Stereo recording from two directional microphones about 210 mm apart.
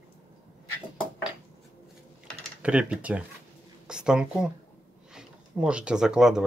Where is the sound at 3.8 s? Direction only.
5° right (ahead or behind).